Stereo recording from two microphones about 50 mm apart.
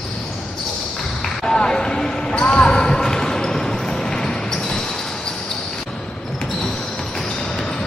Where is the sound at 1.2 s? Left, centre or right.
Centre.